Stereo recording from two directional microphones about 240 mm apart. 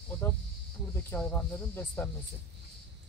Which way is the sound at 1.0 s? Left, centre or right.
Centre.